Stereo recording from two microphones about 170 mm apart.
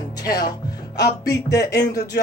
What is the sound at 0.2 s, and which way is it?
Speech, 20° left (ahead or behind).